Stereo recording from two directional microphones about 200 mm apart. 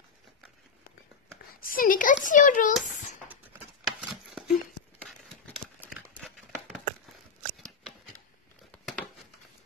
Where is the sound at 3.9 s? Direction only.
Centre (ahead or behind).